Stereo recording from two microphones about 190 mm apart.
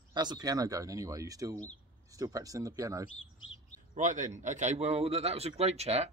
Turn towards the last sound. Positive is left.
turn(degrees=-35)  # may be behind; listen again after turning